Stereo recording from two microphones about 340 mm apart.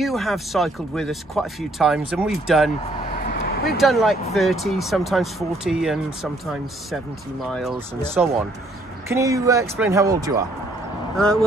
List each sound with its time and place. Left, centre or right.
0.0 s speech: centre
3.0 s vehicle: left
3.7 s speech: centre
7.4 s speech: centre